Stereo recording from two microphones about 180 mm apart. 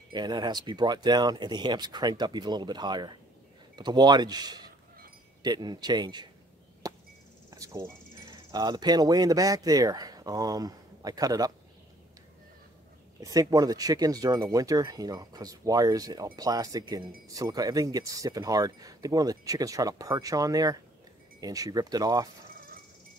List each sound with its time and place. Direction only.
0.1 s speech: 25° right (ahead or behind)
6.8 s chop: 20° right (ahead or behind)
7.5 s cricket: 20° right (ahead or behind)
8.2 s speech: 25° right (ahead or behind)
13.2 s speech: 20° right (ahead or behind)